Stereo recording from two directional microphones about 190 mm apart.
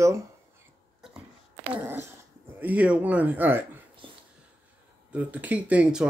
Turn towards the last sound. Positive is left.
turn(degrees=-5)  # may be behind; listen again after turning